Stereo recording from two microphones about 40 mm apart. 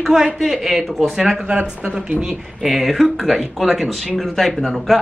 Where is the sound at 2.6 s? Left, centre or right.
Centre.